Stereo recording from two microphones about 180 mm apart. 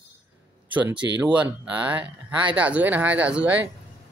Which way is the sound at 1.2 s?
10° right (ahead or behind).